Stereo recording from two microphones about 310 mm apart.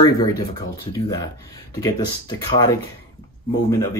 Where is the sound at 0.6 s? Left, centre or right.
Centre.